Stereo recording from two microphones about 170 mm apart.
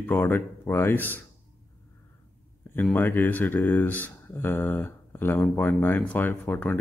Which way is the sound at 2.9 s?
10° left (ahead or behind).